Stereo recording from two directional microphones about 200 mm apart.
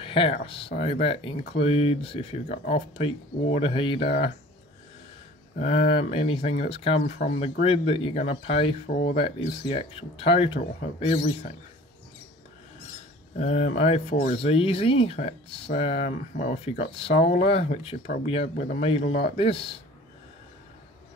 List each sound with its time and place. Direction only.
0.0 s speech: 25° left (ahead or behind)
5.6 s speech: 30° left (ahead or behind)
13.4 s speech: 35° left (ahead or behind)